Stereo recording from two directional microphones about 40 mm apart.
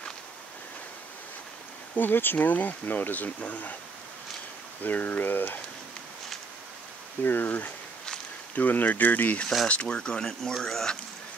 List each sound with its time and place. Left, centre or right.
2.0 s speech: left
4.8 s speech: left
7.2 s speech: left
9.7 s speech: left; by 11.0 s centre